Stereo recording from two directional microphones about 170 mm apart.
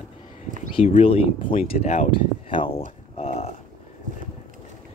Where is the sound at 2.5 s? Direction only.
30° left (ahead or behind).